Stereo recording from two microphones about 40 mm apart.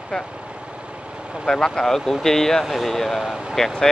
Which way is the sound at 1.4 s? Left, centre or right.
Centre.